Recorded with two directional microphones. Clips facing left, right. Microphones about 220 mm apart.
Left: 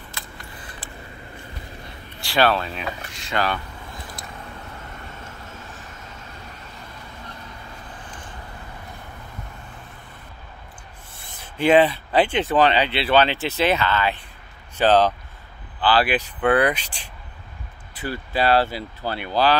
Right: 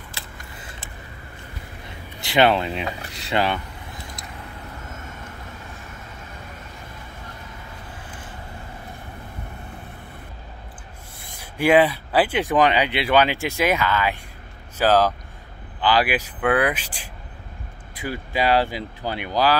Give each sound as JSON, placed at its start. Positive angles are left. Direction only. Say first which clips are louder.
{"t": 0.1, "sound": "keys jangling", "louder": "even", "side_deg": -25}
{"t": 2.0, "sound": "speech", "louder": "right 2 dB", "side_deg": -20}
{"t": 11.1, "sound": "speech", "louder": "even", "side_deg": -10}